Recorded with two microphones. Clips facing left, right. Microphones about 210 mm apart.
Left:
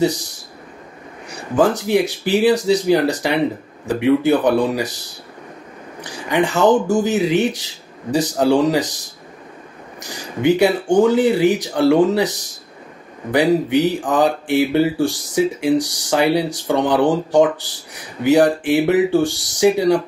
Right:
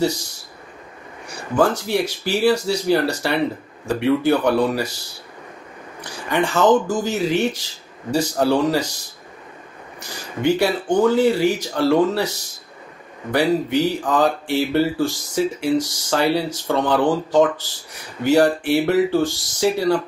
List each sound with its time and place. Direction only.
0.0 s speech: 15° left (ahead or behind)
1.6 s speech: 15° left (ahead or behind)
6.3 s speech: 15° left (ahead or behind)
10.0 s speech: 15° left (ahead or behind)